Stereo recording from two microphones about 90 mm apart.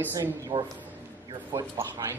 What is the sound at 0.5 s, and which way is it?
Speech, 65° right (ahead or behind).